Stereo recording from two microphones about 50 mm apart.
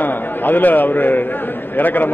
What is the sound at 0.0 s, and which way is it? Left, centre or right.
A man's voice, left.